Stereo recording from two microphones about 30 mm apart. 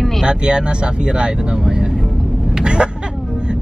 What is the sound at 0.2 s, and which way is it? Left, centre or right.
Speech, right.